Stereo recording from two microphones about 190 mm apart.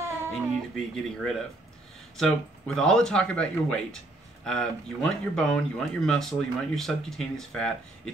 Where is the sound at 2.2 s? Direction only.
5° left (ahead or behind).